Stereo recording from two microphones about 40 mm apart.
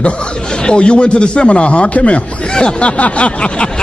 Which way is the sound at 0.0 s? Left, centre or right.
Left.